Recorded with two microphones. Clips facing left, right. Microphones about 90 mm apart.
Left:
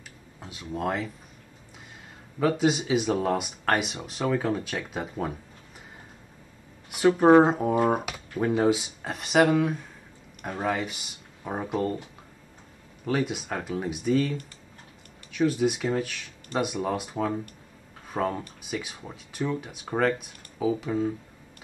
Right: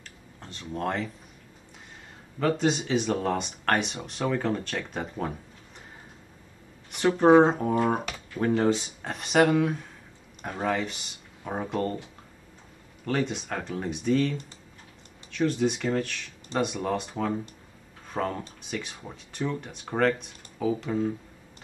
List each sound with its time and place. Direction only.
0.4 s speech: 10° left (ahead or behind)
2.3 s speech: 5° left (ahead or behind)
6.9 s speech: 5° left (ahead or behind)
13.0 s speech: 5° left (ahead or behind)
15.3 s speech: 5° left (ahead or behind)